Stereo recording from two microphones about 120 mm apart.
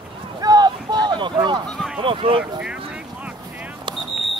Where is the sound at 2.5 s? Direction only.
10° right (ahead or behind).